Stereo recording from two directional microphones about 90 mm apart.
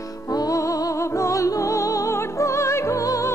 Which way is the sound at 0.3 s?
45° left (ahead or behind).